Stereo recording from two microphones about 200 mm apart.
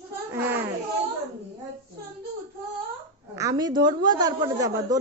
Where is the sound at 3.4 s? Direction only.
20° right (ahead or behind).